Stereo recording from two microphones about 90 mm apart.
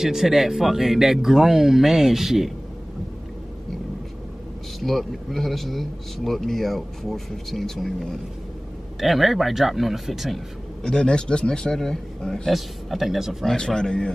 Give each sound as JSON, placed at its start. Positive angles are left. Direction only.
{"t": 0.0, "sound": "speech", "side_deg": -5}
{"t": 4.7, "sound": "speech", "side_deg": 0}